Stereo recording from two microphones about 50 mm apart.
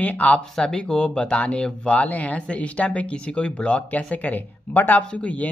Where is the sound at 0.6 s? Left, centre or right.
Centre; by 5.0 s left.